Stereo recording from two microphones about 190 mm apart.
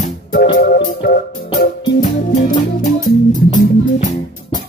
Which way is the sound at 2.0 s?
45° left (ahead or behind).